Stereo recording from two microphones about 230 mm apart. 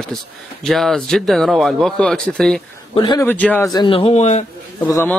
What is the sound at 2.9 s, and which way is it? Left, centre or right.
Speech, centre.